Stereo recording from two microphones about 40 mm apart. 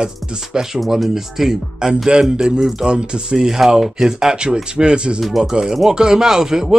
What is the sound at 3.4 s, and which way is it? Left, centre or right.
Speech, centre.